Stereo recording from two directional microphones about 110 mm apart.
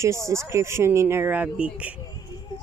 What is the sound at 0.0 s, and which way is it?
Speech, 25° right (ahead or behind).